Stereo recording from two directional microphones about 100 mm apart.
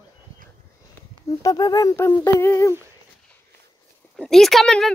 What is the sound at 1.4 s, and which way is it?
Speech, 40° left (ahead or behind).